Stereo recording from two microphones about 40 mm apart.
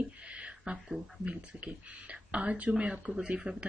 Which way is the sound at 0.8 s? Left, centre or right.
Centre.